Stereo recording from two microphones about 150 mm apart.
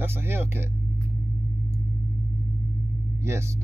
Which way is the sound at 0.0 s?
15° right (ahead or behind).